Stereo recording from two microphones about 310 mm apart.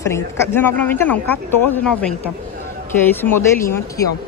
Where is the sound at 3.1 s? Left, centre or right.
Centre.